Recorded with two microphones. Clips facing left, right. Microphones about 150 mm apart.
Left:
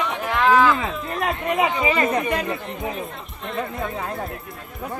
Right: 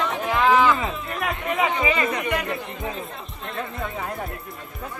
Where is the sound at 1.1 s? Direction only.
25° left (ahead or behind).